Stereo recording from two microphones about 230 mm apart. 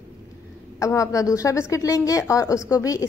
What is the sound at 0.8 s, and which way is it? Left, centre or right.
Speech, centre.